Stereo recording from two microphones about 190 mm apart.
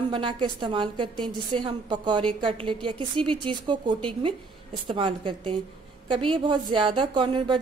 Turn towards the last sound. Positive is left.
turn(degrees=-25)  # may be behind; listen again after turning